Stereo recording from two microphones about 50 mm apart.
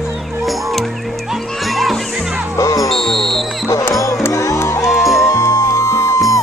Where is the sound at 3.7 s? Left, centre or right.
Left.